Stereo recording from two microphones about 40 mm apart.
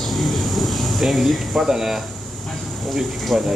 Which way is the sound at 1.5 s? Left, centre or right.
Centre.